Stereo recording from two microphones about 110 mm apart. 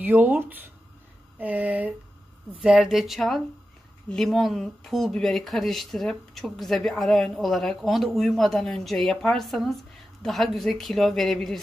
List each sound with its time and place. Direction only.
0.0 s speech: 15° right (ahead or behind); by 11.6 s 5° left (ahead or behind)